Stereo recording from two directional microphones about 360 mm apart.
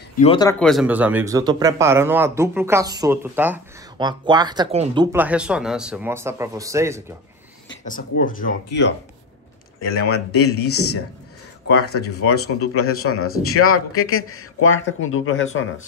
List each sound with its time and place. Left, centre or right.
0.2 s speech: centre
7.8 s speech: left